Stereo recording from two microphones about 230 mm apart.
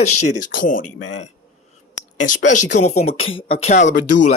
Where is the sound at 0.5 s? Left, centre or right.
Left.